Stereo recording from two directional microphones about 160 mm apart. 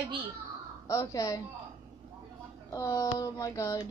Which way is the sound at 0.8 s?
20° left (ahead or behind).